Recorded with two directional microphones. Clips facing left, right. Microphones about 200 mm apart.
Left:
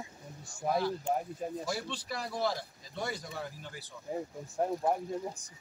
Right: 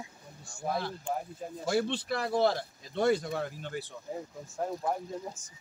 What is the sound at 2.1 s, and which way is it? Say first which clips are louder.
Speech: right 4 dB; 60° right (ahead or behind).